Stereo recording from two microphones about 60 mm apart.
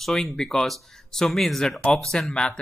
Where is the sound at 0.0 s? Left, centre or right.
Centre.